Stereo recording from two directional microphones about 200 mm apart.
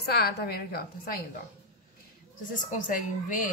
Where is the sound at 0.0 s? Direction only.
55° left (ahead or behind).